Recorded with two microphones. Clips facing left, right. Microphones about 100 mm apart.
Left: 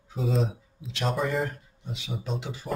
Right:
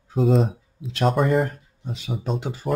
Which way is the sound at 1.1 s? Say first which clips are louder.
Right 5 dB; 60° right (ahead or behind).